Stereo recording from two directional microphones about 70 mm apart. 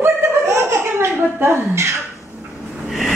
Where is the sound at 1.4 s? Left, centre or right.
Right.